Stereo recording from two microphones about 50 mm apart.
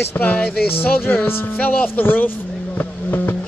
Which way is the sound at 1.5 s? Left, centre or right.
Left.